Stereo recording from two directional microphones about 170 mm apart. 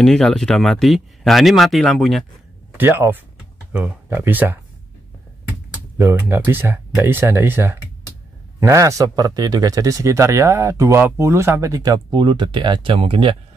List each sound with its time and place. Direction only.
0.0 s speech: 5° left (ahead or behind)
2.8 s speech: 15° right (ahead or behind)
5.9 s speech: 15° right (ahead or behind)